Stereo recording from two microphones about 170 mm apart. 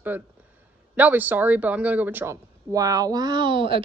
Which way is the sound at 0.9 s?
10° right (ahead or behind).